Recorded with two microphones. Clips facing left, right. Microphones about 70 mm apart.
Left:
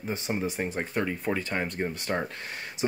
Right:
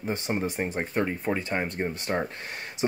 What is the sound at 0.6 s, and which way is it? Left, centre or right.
Speech, right.